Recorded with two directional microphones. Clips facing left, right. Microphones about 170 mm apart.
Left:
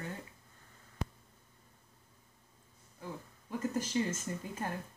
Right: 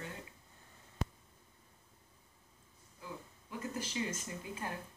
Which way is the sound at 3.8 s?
45° left (ahead or behind).